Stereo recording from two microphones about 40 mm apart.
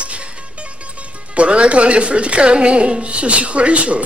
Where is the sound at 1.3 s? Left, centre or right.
Right.